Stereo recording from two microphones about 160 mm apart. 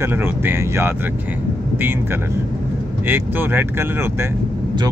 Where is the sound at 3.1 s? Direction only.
15° right (ahead or behind).